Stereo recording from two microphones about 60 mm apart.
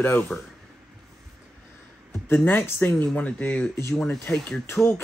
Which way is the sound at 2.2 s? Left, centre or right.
Left.